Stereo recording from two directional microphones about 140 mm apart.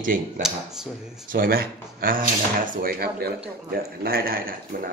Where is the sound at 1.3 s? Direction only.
90° right.